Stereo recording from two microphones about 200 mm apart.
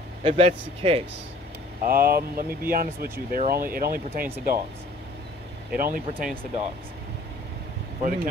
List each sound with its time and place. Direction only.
0.2 s speech: 25° right (ahead or behind)
1.9 s speech: 50° right (ahead or behind)
5.8 s speech: 45° right (ahead or behind)
8.0 s speech: 45° right (ahead or behind)